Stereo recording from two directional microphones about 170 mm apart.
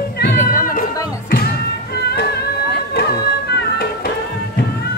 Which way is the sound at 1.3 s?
65° left (ahead or behind).